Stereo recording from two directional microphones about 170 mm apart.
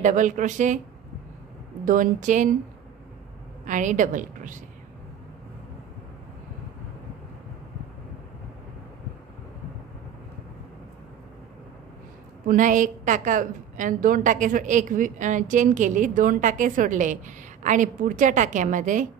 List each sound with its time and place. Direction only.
0.0 s a woman's voice: 50° right (ahead or behind)
1.9 s a woman's voice: 50° right (ahead or behind)
3.6 s a woman's voice: 50° right (ahead or behind)
12.4 s a woman's voice: 50° right (ahead or behind)